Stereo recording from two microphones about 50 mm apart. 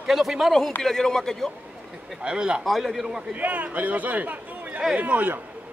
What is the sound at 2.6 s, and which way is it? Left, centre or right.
Speech, centre.